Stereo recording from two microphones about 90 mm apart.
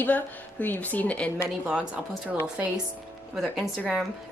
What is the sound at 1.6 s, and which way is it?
Speech, 15° right (ahead or behind).